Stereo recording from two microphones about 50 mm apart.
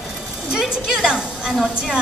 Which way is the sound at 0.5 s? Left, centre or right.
Centre.